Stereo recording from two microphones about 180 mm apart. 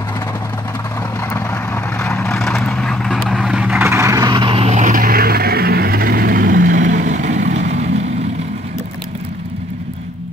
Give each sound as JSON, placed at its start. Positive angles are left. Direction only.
{"t": 1.3, "sound": "vehicle", "side_deg": 10}